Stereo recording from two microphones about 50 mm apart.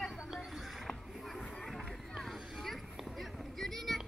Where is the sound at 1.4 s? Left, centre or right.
Centre.